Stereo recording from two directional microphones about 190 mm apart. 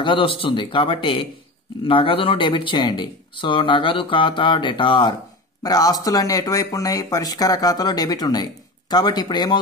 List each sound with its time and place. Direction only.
0.0 s speech: 25° left (ahead or behind)